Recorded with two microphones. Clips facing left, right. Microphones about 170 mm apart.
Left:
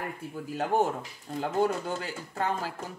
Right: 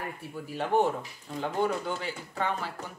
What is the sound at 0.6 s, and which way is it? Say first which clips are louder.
Speech: right 1 dB; 45° left (ahead or behind).